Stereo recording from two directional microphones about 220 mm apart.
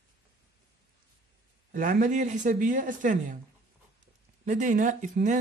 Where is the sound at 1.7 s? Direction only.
35° right (ahead or behind).